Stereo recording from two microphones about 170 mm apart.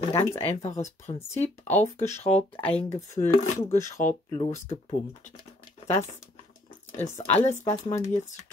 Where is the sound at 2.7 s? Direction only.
15° left (ahead or behind).